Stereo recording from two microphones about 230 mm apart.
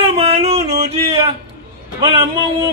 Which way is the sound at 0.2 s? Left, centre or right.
Right.